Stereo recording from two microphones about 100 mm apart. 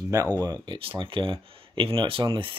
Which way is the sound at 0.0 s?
35° right (ahead or behind).